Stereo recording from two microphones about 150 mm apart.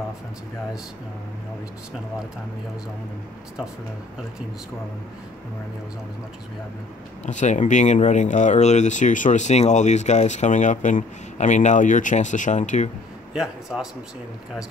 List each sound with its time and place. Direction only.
7.2 s speech: 55° left (ahead or behind)
13.3 s a man's voice: 5° right (ahead or behind)